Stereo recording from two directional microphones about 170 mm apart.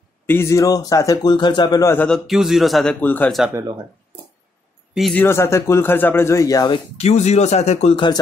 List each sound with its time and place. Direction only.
0.3 s a man's voice: 15° left (ahead or behind)
2.0 s a man's voice: centre (ahead or behind)
5.1 s speech: 15° left (ahead or behind)
7.0 s speech: 40° left (ahead or behind)